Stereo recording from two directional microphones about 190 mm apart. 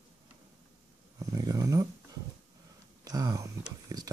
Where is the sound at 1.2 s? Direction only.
20° right (ahead or behind).